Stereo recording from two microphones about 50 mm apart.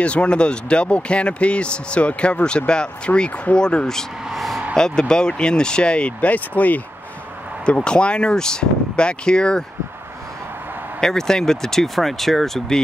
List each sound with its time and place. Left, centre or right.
0.0 s speech: left
4.3 s a sound: centre
4.7 s speech: centre; by 6.8 s left
7.6 s speech: centre
11.0 s speech: centre